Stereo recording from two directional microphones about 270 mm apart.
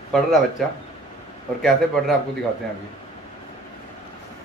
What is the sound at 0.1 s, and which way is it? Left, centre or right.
A child's voice, centre.